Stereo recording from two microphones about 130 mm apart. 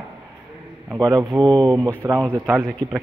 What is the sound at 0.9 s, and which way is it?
Speech, 30° right (ahead or behind).